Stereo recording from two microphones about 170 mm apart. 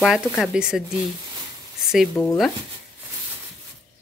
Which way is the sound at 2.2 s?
25° left (ahead or behind).